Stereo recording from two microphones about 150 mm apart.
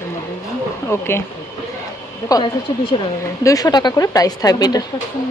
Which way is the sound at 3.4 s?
25° left (ahead or behind).